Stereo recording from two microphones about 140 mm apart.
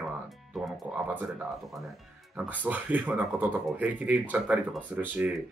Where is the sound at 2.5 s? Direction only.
10° right (ahead or behind).